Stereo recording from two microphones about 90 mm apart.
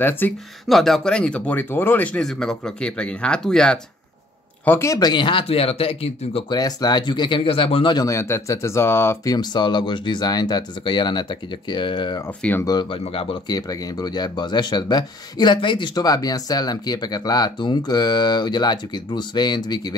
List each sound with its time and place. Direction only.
0.2 s speech: 20° left (ahead or behind)
0.7 s speech: centre (ahead or behind); by 2.0 s 25° left (ahead or behind)
2.1 s speech: 5° left (ahead or behind)
4.6 s speech: 30° left (ahead or behind)
4.9 s speech: 50° left (ahead or behind); by 6.4 s 90° left
6.5 s speech: 50° left (ahead or behind); by 7.9 s 90° left
8.1 s speech: 30° left (ahead or behind)
9.3 s speech: 50° left (ahead or behind)
12.4 s speech: 15° left (ahead or behind)
12.9 s speech: 90° left
13.5 s speech: 45° left (ahead or behind)